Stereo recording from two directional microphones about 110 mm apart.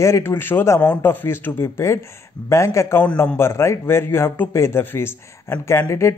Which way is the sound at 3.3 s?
25° left (ahead or behind).